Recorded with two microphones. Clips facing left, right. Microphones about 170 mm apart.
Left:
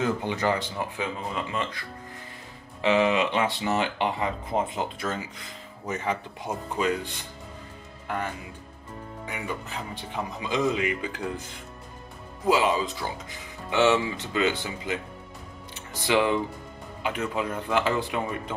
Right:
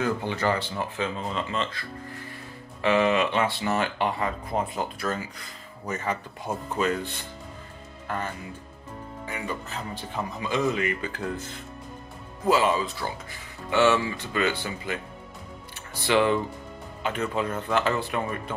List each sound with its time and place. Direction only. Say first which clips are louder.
0.0 s speech: even; 15° left (ahead or behind)
9.3 s speech: right 1 dB; 15° left (ahead or behind)